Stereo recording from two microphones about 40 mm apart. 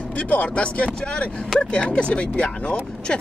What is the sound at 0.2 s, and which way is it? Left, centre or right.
Speech, left.